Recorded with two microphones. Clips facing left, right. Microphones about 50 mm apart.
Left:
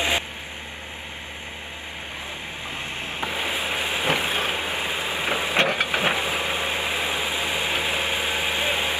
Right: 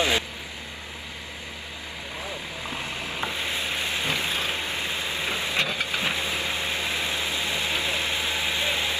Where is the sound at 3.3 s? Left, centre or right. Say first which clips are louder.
Left 3 dB; centre.